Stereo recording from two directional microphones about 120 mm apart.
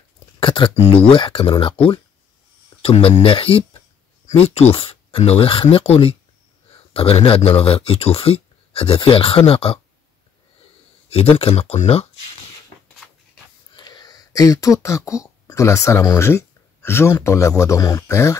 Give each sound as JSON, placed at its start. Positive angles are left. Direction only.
{"t": 0.4, "sound": "a sound", "side_deg": 45}
{"t": 0.7, "sound": "speech", "side_deg": 50}
{"t": 4.7, "sound": "speech", "side_deg": 50}
{"t": 11.1, "sound": "speech", "side_deg": 55}
{"t": 13.7, "sound": "speech", "side_deg": 35}